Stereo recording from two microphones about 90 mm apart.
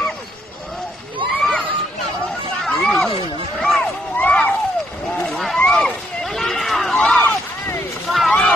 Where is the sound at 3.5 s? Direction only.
5° left (ahead or behind).